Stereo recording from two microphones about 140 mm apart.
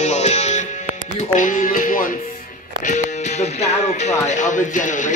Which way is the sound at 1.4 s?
70° left (ahead or behind).